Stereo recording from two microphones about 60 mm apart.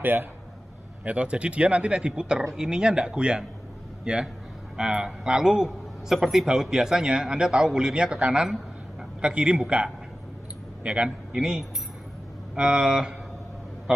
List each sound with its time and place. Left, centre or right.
0.0 s a man's voice: right
1.0 s a man's voice: right
13.9 s a sound: centre